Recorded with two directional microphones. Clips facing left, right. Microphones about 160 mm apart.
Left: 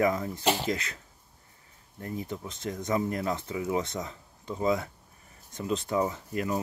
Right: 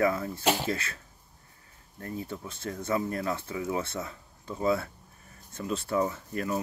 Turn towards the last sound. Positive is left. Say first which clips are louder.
# left 1 dB
turn(degrees=15)  # may be behind; listen again after turning